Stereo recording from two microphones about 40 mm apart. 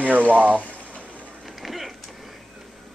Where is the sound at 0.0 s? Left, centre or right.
Right.